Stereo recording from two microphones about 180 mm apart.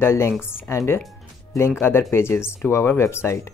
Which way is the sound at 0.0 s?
15° left (ahead or behind).